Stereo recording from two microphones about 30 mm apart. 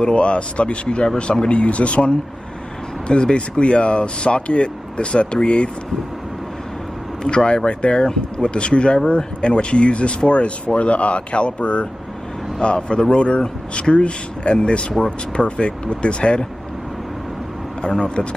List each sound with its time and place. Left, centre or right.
0.1 s speech: left
1.5 s speech: left
3.1 s speech: left
7.2 s speech: left